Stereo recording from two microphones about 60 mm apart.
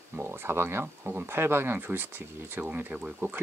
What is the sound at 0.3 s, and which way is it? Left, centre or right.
Speech, right.